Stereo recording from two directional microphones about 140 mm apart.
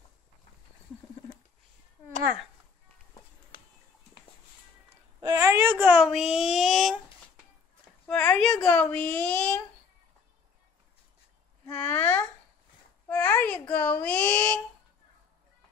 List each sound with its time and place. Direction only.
5.2 s speech: 20° right (ahead or behind); by 7.0 s centre (ahead or behind)
8.1 s speech: 5° left (ahead or behind)
11.7 s a sound: 10° left (ahead or behind)
13.1 s speech: 10° left (ahead or behind)